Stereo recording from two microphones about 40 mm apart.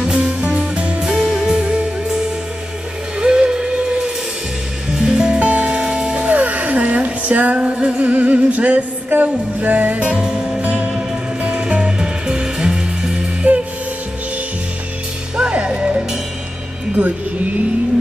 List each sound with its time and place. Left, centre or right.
0.0 s music: right
1.0 s music: centre
1.3 s music: centre
3.2 s music: right
4.9 s music: centre
6.2 s music: right
10.2 s music: centre
11.4 s music: right
13.4 s music: right
15.3 s music: right